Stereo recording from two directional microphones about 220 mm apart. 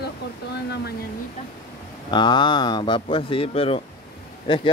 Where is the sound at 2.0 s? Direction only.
20° left (ahead or behind).